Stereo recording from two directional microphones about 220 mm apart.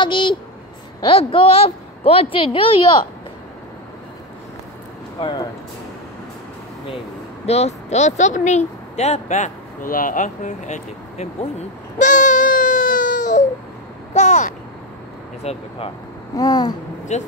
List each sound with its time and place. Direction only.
0.0 s a woman's voice: 20° left (ahead or behind)
5.2 s a woman's voice: 20° left (ahead or behind)
7.4 s speech: 30° left (ahead or behind)
12.0 s baby cry: 35° left (ahead or behind)
14.1 s a sound: 35° left (ahead or behind)
15.4 s a woman's voice: 30° left (ahead or behind)
16.3 s babbling: 15° left (ahead or behind)
17.1 s speech: 30° left (ahead or behind)